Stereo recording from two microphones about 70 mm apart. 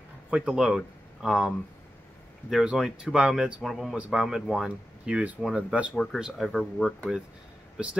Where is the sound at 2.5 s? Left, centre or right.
Centre.